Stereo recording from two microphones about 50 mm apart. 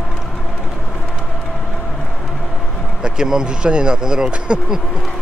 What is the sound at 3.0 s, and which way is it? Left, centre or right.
Speech, centre.